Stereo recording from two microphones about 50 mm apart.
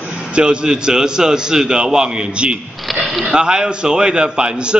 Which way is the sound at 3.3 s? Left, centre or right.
Centre.